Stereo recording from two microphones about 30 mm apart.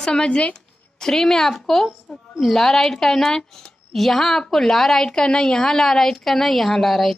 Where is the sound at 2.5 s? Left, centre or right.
Centre.